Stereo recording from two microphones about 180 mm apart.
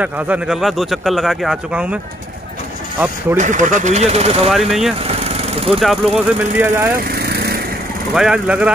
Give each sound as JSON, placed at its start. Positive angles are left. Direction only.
{"t": 0.0, "sound": "speech", "side_deg": -5}
{"t": 3.0, "sound": "speech", "side_deg": -10}
{"t": 3.3, "sound": "speech", "side_deg": -45}
{"t": 4.5, "sound": "speech", "side_deg": 0}
{"t": 5.0, "sound": "lawn mower", "side_deg": -35}
{"t": 5.8, "sound": "speech", "side_deg": 0}
{"t": 6.6, "sound": "speech", "side_deg": -10}
{"t": 7.2, "sound": "vehicle", "side_deg": -60}
{"t": 8.1, "sound": "speech", "side_deg": -5}